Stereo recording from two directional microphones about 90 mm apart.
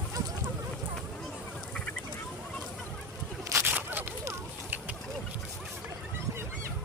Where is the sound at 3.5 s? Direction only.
20° right (ahead or behind).